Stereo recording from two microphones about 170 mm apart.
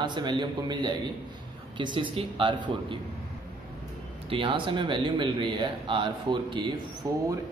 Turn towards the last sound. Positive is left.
turn(degrees=-20)  # may be behind; listen again after turning